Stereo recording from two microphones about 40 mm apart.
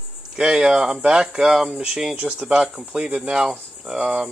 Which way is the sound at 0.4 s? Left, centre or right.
Right.